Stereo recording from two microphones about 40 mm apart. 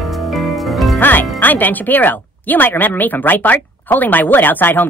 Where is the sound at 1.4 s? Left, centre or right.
Left.